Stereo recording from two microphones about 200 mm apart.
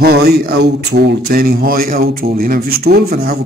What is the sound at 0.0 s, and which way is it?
Speech, 50° right (ahead or behind).